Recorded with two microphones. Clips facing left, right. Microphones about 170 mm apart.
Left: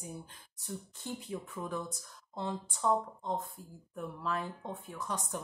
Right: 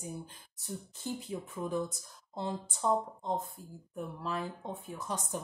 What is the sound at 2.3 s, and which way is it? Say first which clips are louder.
A woman's voice: right 1 dB; 30° right (ahead or behind).